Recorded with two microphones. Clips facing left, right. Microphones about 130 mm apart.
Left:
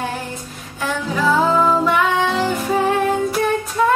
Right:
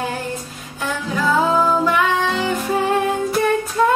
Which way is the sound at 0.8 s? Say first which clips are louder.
Left 2 dB; centre (ahead or behind).